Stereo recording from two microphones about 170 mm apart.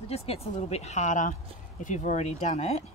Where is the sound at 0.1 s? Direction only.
35° left (ahead or behind).